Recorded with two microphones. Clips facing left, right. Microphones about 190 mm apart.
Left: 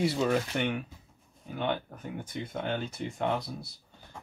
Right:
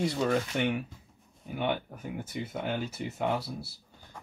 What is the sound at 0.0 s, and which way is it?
Speech, 5° left (ahead or behind).